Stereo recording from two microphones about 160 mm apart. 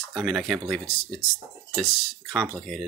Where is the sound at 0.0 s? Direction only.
Centre (ahead or behind).